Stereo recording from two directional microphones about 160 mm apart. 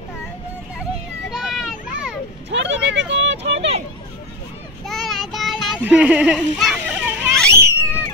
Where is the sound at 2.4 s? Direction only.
90° right.